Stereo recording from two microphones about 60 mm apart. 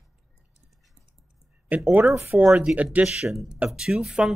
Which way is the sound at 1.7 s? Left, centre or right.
Right.